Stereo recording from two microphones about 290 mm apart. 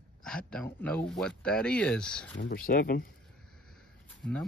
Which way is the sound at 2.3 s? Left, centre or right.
Left.